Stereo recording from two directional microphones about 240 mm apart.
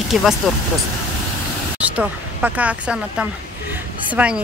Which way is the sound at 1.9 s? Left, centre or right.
Centre.